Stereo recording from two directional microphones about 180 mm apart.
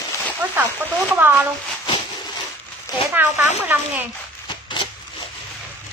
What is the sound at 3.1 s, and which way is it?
Speech, 10° right (ahead or behind).